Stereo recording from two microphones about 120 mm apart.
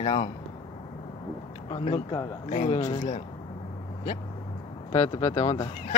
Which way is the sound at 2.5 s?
65° left (ahead or behind).